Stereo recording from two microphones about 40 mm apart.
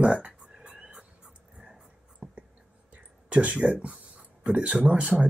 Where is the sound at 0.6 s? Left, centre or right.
Right.